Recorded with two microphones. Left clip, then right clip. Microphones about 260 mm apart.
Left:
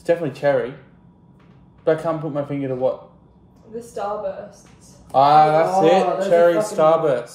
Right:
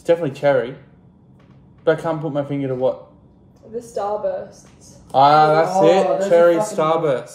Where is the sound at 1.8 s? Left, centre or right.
Centre.